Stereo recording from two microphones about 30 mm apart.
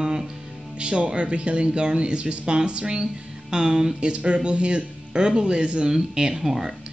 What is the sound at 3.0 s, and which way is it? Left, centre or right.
Speech, right.